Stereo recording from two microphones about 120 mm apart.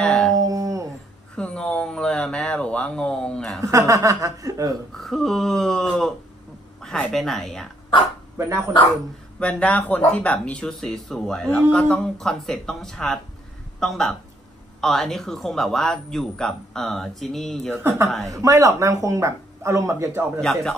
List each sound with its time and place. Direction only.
0.0 s howl: 5° left (ahead or behind)
0.3 s howl: 30° right (ahead or behind)
1.3 s speech: 10° left (ahead or behind)
3.6 s speech: 30° right (ahead or behind)
4.9 s speech: 5° left (ahead or behind)
8.4 s speech: 20° right (ahead or behind)
9.4 s speech: 10° left (ahead or behind)
17.8 s speech: 25° right (ahead or behind)
20.3 s speech: 5° left (ahead or behind)